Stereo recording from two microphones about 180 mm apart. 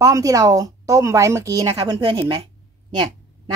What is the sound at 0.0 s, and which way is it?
Speech, 20° right (ahead or behind).